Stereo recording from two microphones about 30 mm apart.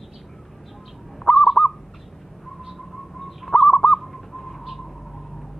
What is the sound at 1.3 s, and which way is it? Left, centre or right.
Owl, centre.